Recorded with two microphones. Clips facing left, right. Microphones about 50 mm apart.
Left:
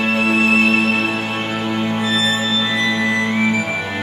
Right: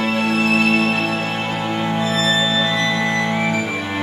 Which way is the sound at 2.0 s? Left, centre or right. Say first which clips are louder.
Right 1 dB; left.